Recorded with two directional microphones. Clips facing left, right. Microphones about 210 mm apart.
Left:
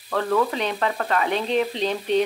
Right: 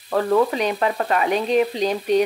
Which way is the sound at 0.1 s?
20° right (ahead or behind).